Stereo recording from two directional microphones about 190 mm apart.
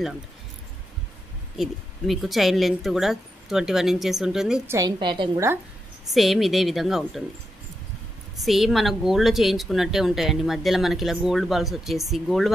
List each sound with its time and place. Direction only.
1.6 s speech: centre (ahead or behind)
4.7 s a woman's voice: 20° right (ahead or behind)
6.1 s speech: centre (ahead or behind)
8.4 s speech: centre (ahead or behind)